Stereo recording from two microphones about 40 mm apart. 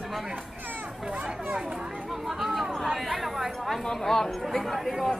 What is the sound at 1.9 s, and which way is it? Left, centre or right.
Chatter, centre.